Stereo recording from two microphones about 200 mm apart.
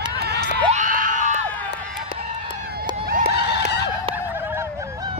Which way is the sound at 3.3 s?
55° left (ahead or behind).